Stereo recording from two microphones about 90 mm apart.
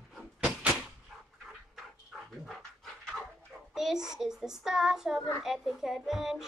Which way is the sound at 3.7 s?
5° right (ahead or behind).